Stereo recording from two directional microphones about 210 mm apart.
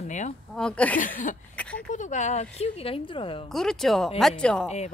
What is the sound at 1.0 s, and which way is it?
Speech, 40° left (ahead or behind).